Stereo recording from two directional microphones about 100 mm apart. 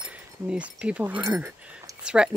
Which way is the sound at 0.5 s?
10° right (ahead or behind).